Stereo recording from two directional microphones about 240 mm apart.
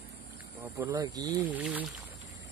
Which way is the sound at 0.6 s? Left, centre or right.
Centre.